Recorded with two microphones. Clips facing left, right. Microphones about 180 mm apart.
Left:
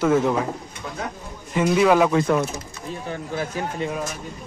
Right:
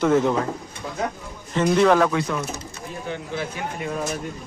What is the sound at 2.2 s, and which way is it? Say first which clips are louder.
Speech: left 6 dB; 55° left (ahead or behind).